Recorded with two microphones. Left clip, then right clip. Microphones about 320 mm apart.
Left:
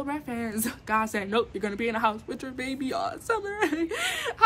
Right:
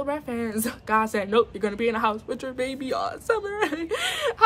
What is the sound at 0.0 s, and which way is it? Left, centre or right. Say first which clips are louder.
Speech: right 4 dB; centre.